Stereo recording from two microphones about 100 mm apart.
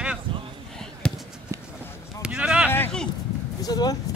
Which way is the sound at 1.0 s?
5° left (ahead or behind).